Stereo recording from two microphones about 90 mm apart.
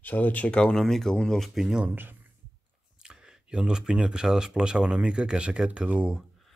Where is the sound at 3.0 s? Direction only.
10° right (ahead or behind).